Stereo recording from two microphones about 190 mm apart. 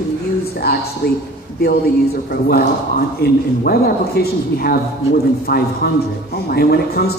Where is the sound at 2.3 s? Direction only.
55° left (ahead or behind).